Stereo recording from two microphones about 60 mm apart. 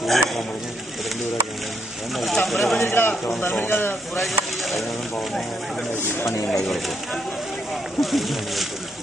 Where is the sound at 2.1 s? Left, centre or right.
Centre.